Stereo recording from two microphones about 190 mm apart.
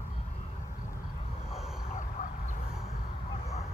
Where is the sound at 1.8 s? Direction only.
40° left (ahead or behind).